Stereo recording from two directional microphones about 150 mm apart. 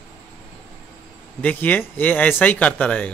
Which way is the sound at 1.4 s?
10° left (ahead or behind).